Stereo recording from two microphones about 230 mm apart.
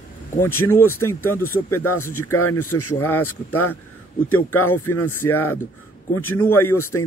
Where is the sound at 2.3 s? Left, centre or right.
Left.